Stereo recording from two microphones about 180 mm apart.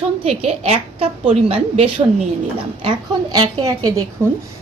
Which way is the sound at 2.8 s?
20° right (ahead or behind).